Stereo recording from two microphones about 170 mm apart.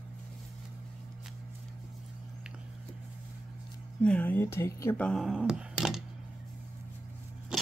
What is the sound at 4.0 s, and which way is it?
Speech, 10° left (ahead or behind).